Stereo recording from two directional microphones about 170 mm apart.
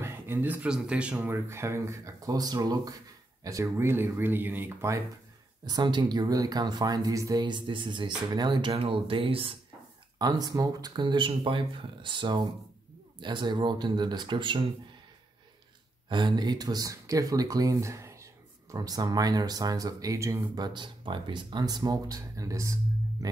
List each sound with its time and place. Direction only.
0.0 s speech: 15° right (ahead or behind); by 14.7 s 30° right (ahead or behind)
16.1 s speech: 25° right (ahead or behind)